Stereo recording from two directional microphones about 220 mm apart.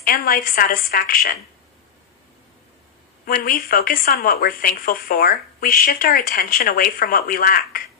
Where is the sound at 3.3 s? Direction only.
40° left (ahead or behind).